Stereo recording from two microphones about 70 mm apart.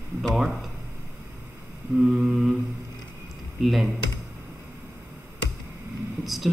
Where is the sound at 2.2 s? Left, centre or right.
Centre.